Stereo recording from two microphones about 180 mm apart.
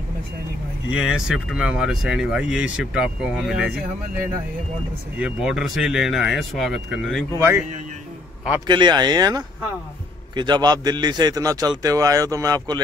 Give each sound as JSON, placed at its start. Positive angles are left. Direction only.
{"t": 0.8, "sound": "speech", "side_deg": -5}
{"t": 5.2, "sound": "speech", "side_deg": -5}
{"t": 7.3, "sound": "speech", "side_deg": -15}
{"t": 8.6, "sound": "a man's voice", "side_deg": -25}